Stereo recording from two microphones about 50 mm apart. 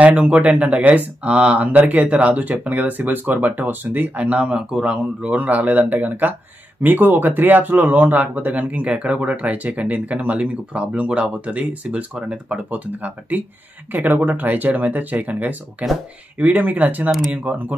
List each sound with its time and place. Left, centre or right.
0.0 s speech: right
4.2 s speech: right
5.3 s speech: right